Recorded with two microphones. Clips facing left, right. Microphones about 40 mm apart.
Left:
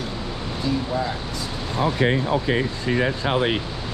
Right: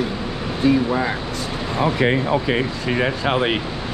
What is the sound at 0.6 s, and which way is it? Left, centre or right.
Speech, right.